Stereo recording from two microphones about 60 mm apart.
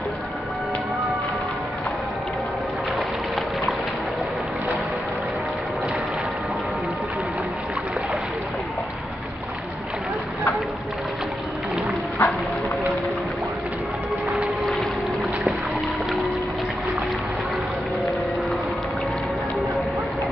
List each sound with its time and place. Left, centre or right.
12.2 s music: left
14.6 s boat: centre